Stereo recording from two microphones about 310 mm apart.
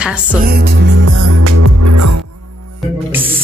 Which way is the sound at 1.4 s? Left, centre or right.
Right.